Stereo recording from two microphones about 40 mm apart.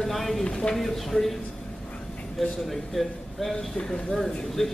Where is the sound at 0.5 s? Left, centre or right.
Centre.